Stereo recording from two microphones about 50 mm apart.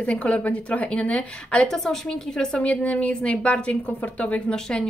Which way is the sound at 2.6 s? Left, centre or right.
Left.